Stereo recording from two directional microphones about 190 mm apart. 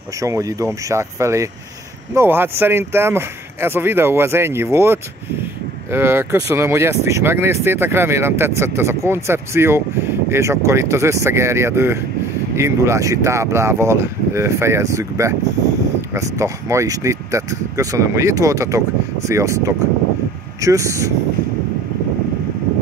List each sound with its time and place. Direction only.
0.2 s speech: 15° right (ahead or behind)